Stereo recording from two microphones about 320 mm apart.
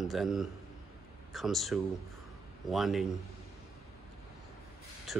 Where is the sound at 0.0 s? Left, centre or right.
Centre.